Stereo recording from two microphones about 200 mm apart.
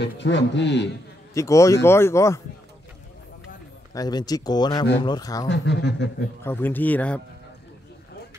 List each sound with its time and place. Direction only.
0.0 s speech: 60° left (ahead or behind)
1.3 s speech: 15° left (ahead or behind)
3.9 s speech: 20° left (ahead or behind)
5.5 s speech: 60° left (ahead or behind)
6.4 s speech: 10° left (ahead or behind)